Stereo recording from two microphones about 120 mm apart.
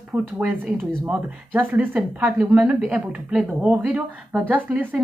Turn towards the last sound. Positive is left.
turn(degrees=-10)  # may be behind; listen again after turning